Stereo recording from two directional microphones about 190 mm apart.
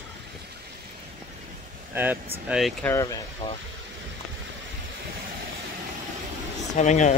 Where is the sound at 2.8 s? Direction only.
15° left (ahead or behind).